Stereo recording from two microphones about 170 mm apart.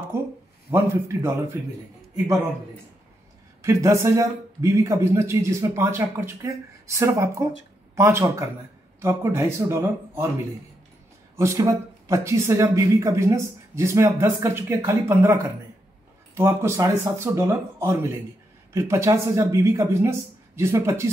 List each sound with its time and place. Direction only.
0.1 s speech: 15° right (ahead or behind)
3.6 s speech: 15° right (ahead or behind)
11.3 s speech: 20° right (ahead or behind)
16.3 s speech: 15° right (ahead or behind)